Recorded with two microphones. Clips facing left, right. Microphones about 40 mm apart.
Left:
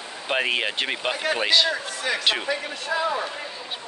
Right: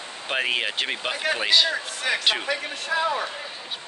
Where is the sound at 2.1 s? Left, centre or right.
Right.